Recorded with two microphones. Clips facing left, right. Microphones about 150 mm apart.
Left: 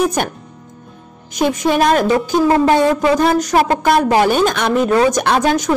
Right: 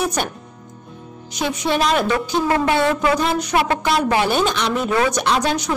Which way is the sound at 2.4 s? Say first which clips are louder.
Left 6 dB; 30° left (ahead or behind).